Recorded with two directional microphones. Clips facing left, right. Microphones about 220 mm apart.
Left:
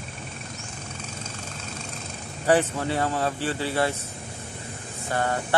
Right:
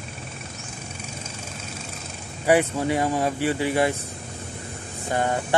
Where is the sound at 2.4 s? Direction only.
10° right (ahead or behind).